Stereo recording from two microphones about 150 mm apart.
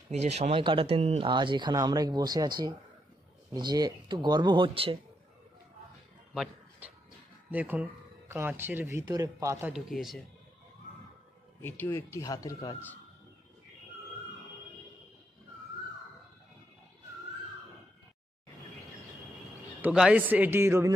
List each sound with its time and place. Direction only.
0.1 s speech: 45° right (ahead or behind)
7.5 s speech: 10° right (ahead or behind)
9.7 s a man's voice: centre (ahead or behind)
11.6 s speech: 15° left (ahead or behind)
19.8 s a man's voice: 5° right (ahead or behind)